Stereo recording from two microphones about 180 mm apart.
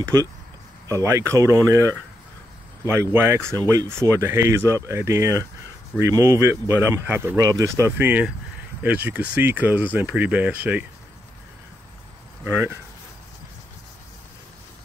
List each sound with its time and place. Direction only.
0.0 s speech: 20° right (ahead or behind)
12.4 s speech: 10° right (ahead or behind)